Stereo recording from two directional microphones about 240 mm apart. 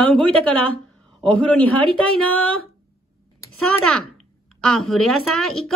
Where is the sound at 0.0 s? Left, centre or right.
Centre.